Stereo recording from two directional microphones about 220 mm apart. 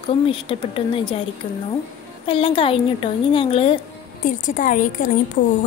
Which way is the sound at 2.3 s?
25° left (ahead or behind).